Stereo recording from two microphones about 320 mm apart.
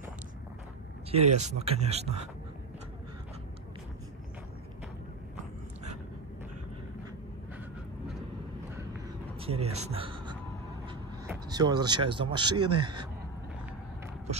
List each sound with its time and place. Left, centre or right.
1.1 s speech: right
9.4 s speech: centre